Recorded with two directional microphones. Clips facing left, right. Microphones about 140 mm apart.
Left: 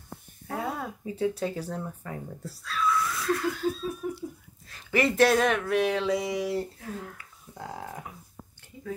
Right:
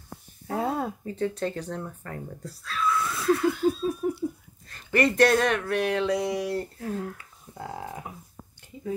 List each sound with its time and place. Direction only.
0.5 s a sound: 30° right (ahead or behind)
1.0 s speech: 10° left (ahead or behind)
4.0 s speech: 35° right (ahead or behind)
4.6 s speech: centre (ahead or behind)